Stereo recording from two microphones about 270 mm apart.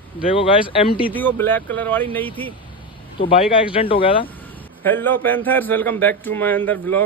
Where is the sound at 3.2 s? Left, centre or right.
Centre.